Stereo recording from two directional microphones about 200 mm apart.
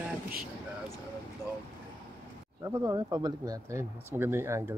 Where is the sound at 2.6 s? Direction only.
15° right (ahead or behind).